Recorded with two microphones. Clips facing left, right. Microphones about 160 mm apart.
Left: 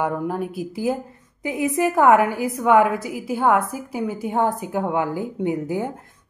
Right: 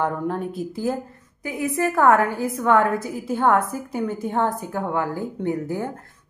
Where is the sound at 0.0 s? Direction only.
10° left (ahead or behind).